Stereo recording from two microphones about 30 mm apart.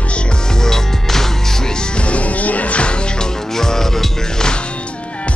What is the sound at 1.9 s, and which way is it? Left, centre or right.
Music, left.